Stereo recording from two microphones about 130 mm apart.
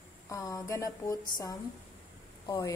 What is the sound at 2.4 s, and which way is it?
Speech, 30° left (ahead or behind).